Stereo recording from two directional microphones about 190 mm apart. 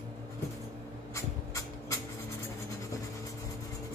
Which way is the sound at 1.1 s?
15° left (ahead or behind).